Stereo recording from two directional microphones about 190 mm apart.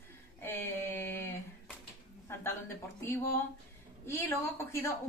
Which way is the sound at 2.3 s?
10° left (ahead or behind).